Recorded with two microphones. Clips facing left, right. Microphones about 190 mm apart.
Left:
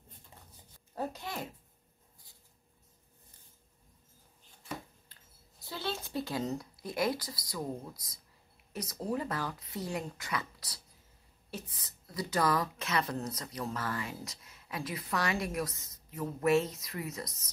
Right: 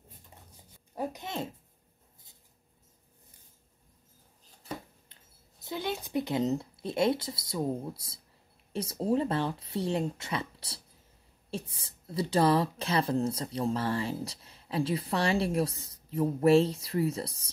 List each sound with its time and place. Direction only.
0.9 s speech: 15° right (ahead or behind)
5.1 s speech: 20° right (ahead or behind)